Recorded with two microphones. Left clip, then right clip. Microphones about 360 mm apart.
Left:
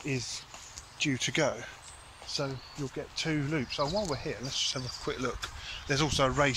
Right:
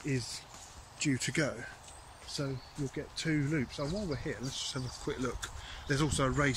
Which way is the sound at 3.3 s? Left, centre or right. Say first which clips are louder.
Even; left.